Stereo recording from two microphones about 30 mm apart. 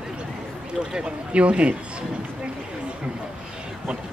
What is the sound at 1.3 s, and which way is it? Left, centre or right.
Speech, right.